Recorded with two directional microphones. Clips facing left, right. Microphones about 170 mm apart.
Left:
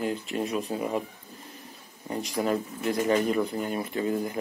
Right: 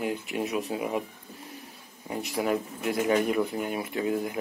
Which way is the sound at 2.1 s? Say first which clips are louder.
Even; 5° right (ahead or behind).